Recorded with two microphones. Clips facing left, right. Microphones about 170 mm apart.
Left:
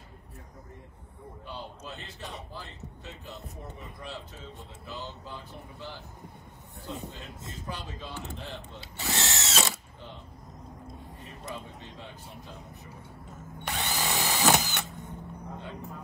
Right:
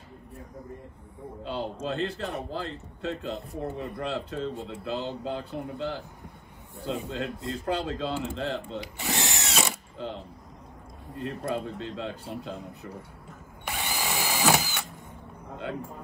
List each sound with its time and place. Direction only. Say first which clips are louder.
1.4 s a man's voice: right 10 dB; 65° right (ahead or behind)
8.8 s drill: right 2 dB; 15° right (ahead or behind)
9.9 s speech: right 10 dB; 70° right (ahead or behind)
13.7 s drill: even; 10° right (ahead or behind)
14.4 s a sound: right 1 dB; centre (ahead or behind)